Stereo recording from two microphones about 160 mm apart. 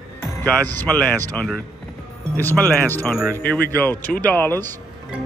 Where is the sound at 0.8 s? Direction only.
5° left (ahead or behind).